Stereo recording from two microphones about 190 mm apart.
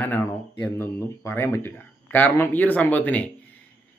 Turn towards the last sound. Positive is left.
turn(degrees=10)  # may be behind; listen again after turning